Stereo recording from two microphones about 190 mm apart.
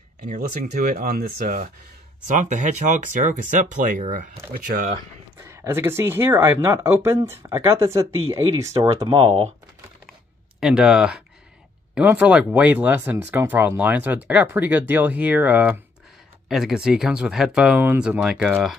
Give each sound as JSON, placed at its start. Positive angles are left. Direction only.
{"t": 0.3, "sound": "speech", "side_deg": -45}
{"t": 5.4, "sound": "speech", "side_deg": -15}
{"t": 9.0, "sound": "speech", "side_deg": -25}
{"t": 10.6, "sound": "speech", "side_deg": -5}